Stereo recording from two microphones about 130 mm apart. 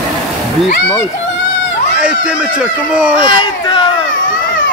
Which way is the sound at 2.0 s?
5° right (ahead or behind).